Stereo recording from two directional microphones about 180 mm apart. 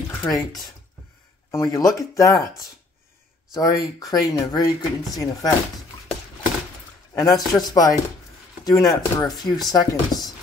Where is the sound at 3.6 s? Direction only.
20° left (ahead or behind).